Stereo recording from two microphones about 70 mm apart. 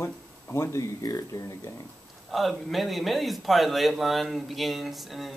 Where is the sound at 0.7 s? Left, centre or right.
Left.